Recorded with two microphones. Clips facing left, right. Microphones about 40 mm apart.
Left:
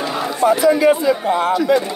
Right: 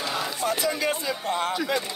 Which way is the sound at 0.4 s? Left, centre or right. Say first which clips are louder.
Left 15 dB; centre.